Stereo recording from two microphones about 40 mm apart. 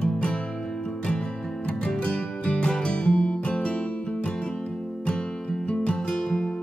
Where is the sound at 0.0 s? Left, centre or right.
Left.